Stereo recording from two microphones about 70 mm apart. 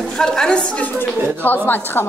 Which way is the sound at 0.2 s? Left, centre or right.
Centre.